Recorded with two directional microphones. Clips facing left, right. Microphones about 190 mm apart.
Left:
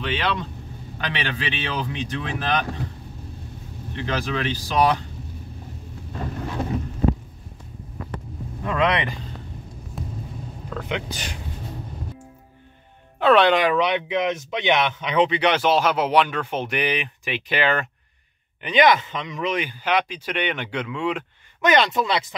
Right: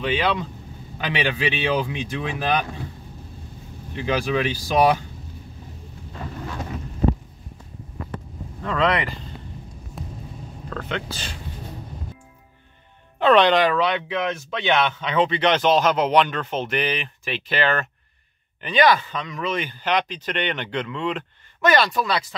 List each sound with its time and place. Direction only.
0.0 s speech: 5° right (ahead or behind)
3.9 s speech: 10° right (ahead or behind)
8.6 s speech: 15° left (ahead or behind)
10.0 s rumble: centre (ahead or behind)
10.7 s speech: 15° left (ahead or behind)
13.2 s speech: 5° left (ahead or behind); by 22.3 s 20° left (ahead or behind)